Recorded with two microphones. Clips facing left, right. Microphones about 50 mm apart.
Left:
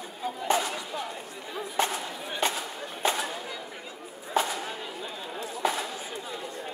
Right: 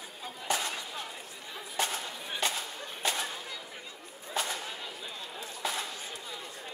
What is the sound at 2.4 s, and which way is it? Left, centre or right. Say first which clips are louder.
Skateboard: left 4 dB; left.